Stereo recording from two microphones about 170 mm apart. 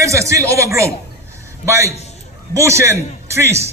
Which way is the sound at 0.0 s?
15° right (ahead or behind).